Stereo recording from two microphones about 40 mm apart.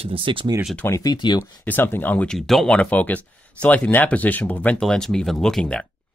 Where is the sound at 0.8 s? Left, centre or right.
Left.